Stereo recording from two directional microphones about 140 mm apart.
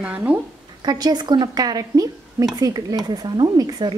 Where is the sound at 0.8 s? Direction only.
30° right (ahead or behind).